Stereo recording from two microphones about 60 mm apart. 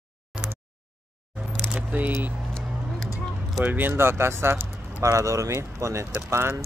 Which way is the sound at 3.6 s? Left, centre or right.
Right.